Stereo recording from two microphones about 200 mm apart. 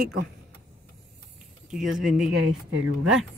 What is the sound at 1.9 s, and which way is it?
Speech, 40° right (ahead or behind).